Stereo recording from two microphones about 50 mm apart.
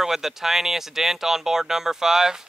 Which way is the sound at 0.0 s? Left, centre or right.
Centre.